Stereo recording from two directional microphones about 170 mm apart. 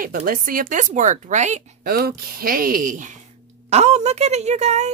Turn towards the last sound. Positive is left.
turn(degrees=-40)  # may be behind; listen again after turning